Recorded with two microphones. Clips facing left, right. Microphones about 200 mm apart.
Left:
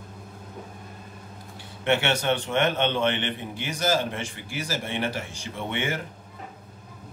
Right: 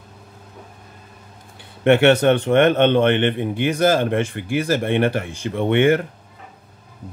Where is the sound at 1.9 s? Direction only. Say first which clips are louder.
Right 10 dB; 55° right (ahead or behind).